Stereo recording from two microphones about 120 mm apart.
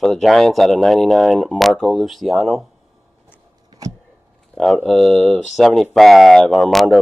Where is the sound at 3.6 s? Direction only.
30° right (ahead or behind).